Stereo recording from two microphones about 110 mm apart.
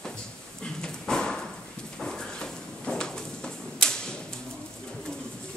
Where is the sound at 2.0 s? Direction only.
5° left (ahead or behind).